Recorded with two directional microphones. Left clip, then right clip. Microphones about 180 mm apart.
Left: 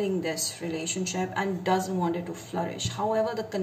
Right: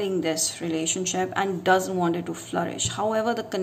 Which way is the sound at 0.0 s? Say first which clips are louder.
Right 3 dB; 45° right (ahead or behind).